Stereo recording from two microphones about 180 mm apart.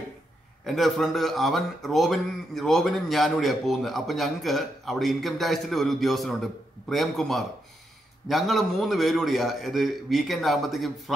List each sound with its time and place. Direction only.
0.7 s speech: centre (ahead or behind)